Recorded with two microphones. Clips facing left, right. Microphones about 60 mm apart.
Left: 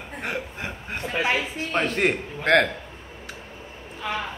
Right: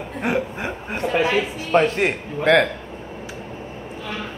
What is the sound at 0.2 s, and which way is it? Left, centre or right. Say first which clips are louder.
Speech: right 8 dB; centre.